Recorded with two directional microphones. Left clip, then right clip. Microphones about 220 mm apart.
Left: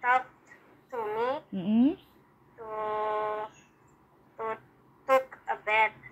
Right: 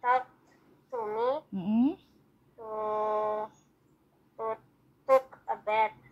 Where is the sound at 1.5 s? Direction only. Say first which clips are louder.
Left 2 dB; 20° right (ahead or behind).